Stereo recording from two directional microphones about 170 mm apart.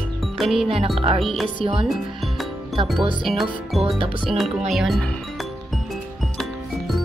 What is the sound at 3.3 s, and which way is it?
Music, centre (ahead or behind).